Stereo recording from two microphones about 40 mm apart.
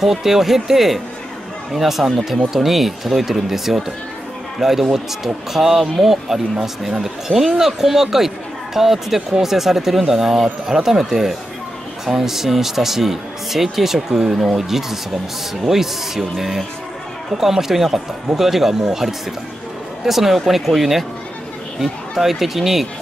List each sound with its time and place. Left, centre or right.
0.0 s speech: centre